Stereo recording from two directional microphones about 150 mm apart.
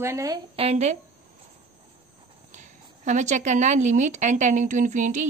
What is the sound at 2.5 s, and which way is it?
A woman's voice, 55° right (ahead or behind).